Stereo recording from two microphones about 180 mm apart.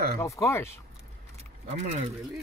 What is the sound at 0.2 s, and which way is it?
Speech, 15° left (ahead or behind).